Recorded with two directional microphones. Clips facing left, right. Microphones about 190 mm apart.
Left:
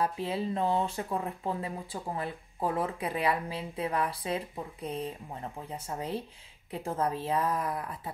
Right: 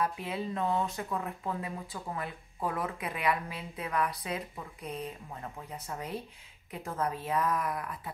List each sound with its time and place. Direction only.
0.0 s speech: 30° left (ahead or behind)